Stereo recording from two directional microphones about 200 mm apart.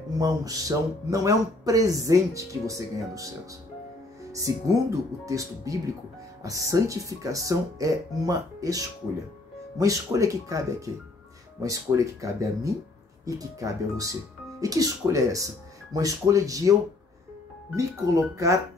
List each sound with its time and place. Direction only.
0.2 s speech: 15° right (ahead or behind)
4.7 s speech: 15° right (ahead or behind)
11.6 s speech: 15° right (ahead or behind)
17.7 s speech: 15° right (ahead or behind)